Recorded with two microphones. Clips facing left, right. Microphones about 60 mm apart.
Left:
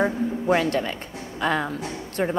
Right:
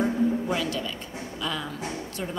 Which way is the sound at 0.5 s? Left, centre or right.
Left.